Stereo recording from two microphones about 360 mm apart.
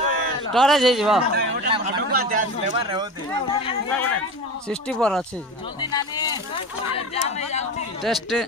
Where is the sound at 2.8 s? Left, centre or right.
Centre.